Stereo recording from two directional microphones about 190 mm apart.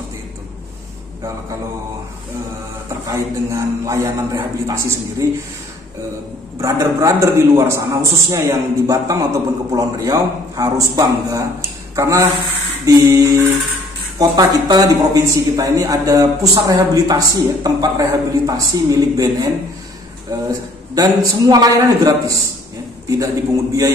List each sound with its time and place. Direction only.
3.1 s a man's voice: 15° right (ahead or behind)
6.6 s a man's voice: 20° right (ahead or behind)
20.9 s a man's voice: 20° right (ahead or behind)